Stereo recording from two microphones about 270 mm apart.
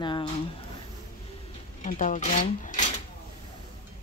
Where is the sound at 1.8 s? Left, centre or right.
Left.